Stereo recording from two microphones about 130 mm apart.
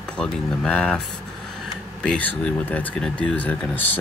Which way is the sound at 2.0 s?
10° left (ahead or behind).